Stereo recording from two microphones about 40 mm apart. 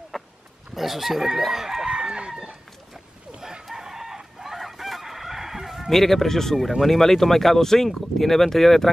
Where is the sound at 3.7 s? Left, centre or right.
Centre.